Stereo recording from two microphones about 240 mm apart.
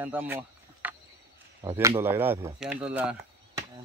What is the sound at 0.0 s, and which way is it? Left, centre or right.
Speech, centre.